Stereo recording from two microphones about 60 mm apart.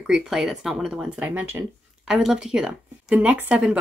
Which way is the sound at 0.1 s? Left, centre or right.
Centre.